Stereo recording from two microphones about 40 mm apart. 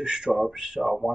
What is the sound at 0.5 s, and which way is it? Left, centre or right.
Speech, centre.